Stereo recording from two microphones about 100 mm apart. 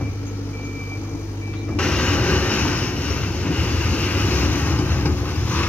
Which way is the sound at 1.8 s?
10° left (ahead or behind).